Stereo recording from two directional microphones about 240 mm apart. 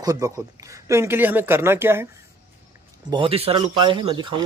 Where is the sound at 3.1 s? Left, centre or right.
Right.